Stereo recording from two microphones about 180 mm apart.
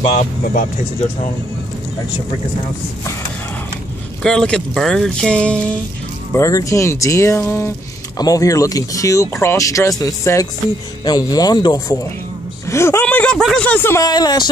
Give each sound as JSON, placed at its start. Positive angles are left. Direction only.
{"t": 0.0, "sound": "speech", "side_deg": 40}
{"t": 4.2, "sound": "speech", "side_deg": 5}
{"t": 6.3, "sound": "speech", "side_deg": 15}